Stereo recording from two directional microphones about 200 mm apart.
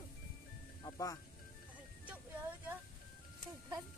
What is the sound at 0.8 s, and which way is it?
Speech, 15° left (ahead or behind).